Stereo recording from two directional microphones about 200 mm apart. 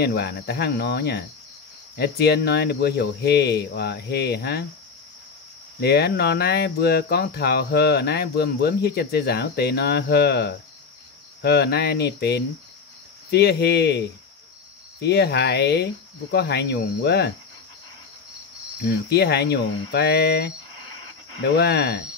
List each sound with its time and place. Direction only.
0.0 s speech: 55° left (ahead or behind)
5.8 s speech: 55° left (ahead or behind)
13.3 s cricket: 55° left (ahead or behind)
15.0 s speech: 55° left (ahead or behind)
18.9 s speech: 55° left (ahead or behind)
21.5 s speech: 50° left (ahead or behind)